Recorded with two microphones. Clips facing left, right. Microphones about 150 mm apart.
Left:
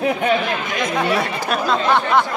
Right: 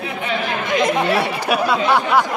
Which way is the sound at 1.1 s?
10° right (ahead or behind).